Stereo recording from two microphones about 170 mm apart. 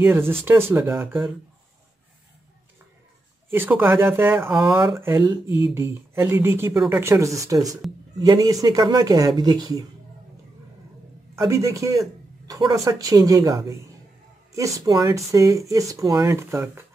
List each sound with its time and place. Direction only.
0.0 s speech: 15° right (ahead or behind)
3.4 s speech: 15° right (ahead or behind)
4.5 s speech: centre (ahead or behind)
4.7 s speech: 25° right (ahead or behind)
5.0 s speech: 15° right (ahead or behind)
11.4 s speech: 15° right (ahead or behind)